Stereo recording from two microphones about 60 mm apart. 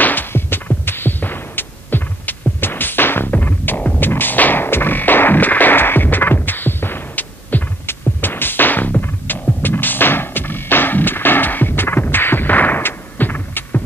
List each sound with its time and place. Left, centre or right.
0.0 s music: left